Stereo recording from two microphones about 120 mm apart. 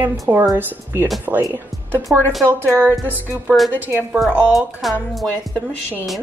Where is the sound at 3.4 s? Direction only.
Centre (ahead or behind).